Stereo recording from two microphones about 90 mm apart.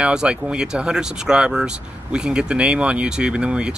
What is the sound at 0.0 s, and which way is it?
Speech, 10° right (ahead or behind).